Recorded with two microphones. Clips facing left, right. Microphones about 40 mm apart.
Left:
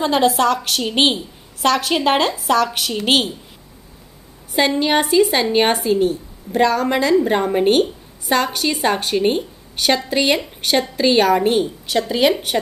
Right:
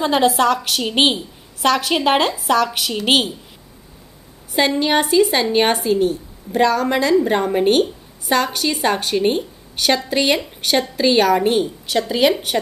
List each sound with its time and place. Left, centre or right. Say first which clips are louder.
0.0 s a woman's voice: even; centre
4.6 s a woman's voice: even; centre